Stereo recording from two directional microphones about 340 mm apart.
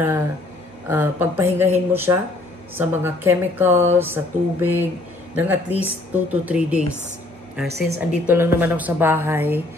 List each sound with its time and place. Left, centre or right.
0.8 s a woman's voice: centre
7.6 s a woman's voice: right
8.0 s a woman's voice: centre